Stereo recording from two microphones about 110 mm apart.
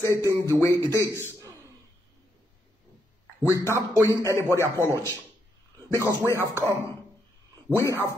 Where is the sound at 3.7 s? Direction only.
25° right (ahead or behind).